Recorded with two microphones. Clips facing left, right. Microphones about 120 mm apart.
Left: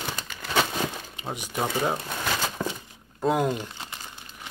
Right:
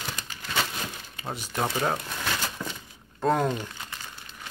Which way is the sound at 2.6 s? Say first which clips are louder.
Left 5 dB; 50° left (ahead or behind).